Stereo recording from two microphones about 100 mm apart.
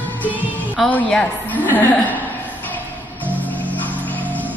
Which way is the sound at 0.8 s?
15° left (ahead or behind).